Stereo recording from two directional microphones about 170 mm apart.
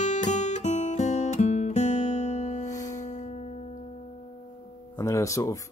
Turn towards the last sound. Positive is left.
turn(degrees=20)  # may be behind; listen again after turning